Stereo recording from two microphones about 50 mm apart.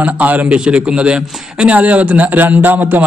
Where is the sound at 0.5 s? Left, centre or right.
Centre.